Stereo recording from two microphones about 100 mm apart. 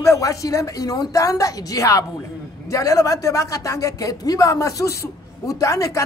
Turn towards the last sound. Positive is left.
turn(degrees=35)  # may be behind; listen again after turning